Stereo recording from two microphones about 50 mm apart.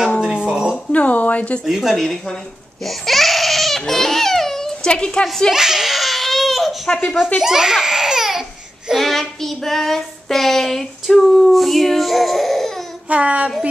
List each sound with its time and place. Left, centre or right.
0.5 s a sound: centre
0.9 s a sound: left
1.6 s speech: centre
2.8 s baby cry: centre
4.9 s a woman's voice: centre
5.5 s crying: centre
6.9 s speech: centre
7.3 s speech: centre
13.1 s a sound: right